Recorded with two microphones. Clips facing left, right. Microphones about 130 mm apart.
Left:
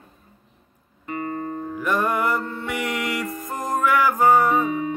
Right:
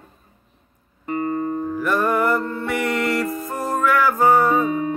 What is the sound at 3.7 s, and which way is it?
Music, 15° left (ahead or behind).